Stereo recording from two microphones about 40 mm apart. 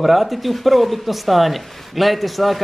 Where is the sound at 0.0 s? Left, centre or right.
Centre.